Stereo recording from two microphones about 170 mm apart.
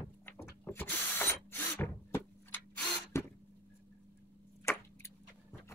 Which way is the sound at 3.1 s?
15° left (ahead or behind).